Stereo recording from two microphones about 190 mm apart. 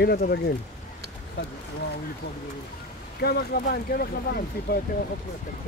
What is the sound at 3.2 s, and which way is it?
Speech, 55° left (ahead or behind).